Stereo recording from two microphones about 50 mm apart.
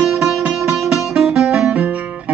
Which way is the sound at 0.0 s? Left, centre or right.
Centre.